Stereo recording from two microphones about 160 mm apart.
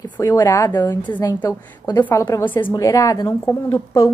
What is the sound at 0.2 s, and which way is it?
Speech, 20° left (ahead or behind).